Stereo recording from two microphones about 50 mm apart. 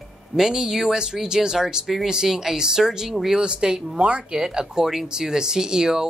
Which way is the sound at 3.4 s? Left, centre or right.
Centre.